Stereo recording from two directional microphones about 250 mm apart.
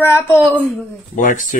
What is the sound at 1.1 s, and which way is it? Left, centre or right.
Speech, left.